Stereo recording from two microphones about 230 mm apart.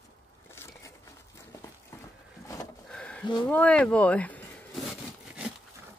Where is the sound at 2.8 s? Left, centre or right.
Centre.